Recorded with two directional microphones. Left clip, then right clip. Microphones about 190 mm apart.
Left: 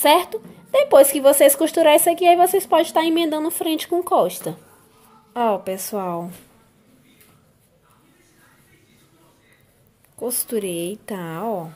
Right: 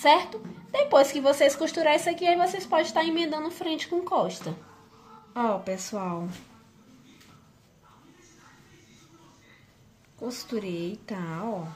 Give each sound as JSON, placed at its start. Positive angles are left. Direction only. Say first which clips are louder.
{"t": 0.0, "sound": "speech", "louder": "left 5 dB", "side_deg": 50}
{"t": 10.2, "sound": "speech", "louder": "left 8 dB", "side_deg": 45}